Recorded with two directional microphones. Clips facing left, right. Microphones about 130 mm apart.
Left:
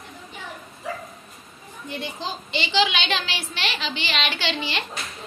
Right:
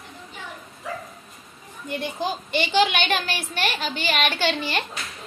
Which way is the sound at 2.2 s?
50° right (ahead or behind).